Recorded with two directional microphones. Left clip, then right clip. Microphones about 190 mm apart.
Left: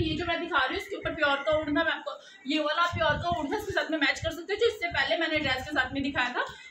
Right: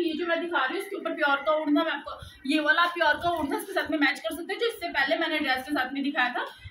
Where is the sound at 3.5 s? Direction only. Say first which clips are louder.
Right 1 dB; 15° left (ahead or behind).